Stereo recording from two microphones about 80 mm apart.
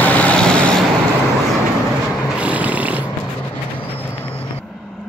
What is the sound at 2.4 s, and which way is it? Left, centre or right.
Vehicle, centre.